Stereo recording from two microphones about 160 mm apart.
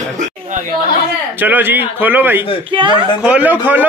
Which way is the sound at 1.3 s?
10° right (ahead or behind).